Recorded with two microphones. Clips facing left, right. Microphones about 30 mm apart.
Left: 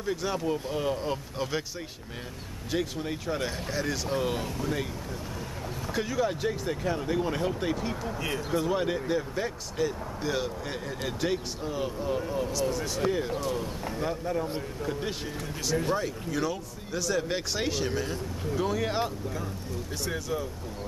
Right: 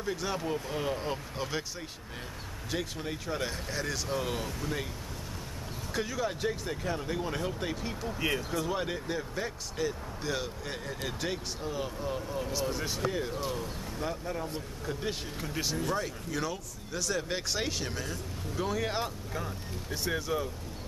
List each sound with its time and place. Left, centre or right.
0.0 s speech: centre
2.7 s speech: centre
5.9 s speech: centre
12.7 s speech: centre
13.0 s speech: centre
15.5 s speech: centre
16.0 s speech: centre
19.3 s speech: centre